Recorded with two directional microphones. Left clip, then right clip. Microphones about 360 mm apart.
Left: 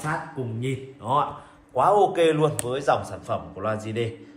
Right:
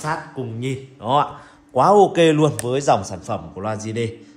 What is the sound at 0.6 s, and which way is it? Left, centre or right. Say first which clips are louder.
A man's voice: right 3 dB; right.